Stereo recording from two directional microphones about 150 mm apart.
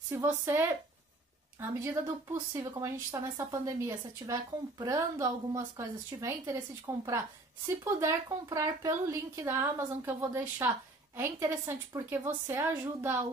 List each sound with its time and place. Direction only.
0.1 s speech: 15° right (ahead or behind)